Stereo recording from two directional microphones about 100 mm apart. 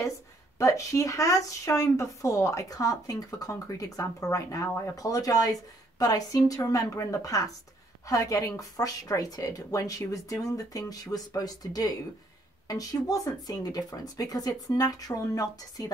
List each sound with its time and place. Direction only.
0.6 s a woman's voice: 30° left (ahead or behind)